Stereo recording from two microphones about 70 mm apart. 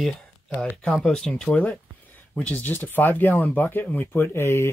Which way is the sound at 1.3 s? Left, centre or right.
Centre.